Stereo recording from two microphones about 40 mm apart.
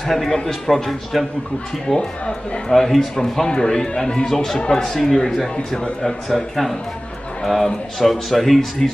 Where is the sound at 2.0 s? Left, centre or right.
Left.